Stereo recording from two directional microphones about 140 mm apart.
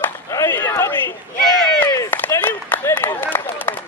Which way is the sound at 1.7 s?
20° left (ahead or behind).